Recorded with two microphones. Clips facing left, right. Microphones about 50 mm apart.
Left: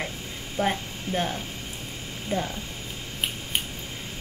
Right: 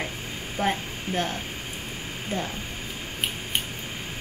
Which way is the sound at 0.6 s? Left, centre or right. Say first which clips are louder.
Even; centre.